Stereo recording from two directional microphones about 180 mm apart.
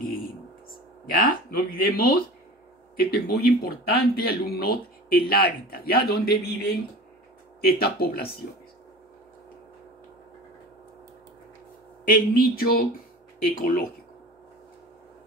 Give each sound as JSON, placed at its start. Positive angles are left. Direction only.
{"t": 0.0, "sound": "a sound", "side_deg": 55}
{"t": 1.2, "sound": "speech", "side_deg": 55}
{"t": 12.0, "sound": "speech", "side_deg": 55}